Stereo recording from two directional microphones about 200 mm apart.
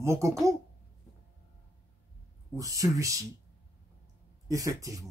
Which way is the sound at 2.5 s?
15° right (ahead or behind).